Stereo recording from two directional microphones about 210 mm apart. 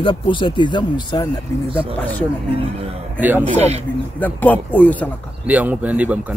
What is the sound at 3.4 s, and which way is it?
Speech, 30° right (ahead or behind).